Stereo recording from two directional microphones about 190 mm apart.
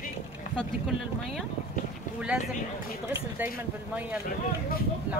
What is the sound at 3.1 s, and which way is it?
Speech, 10° right (ahead or behind).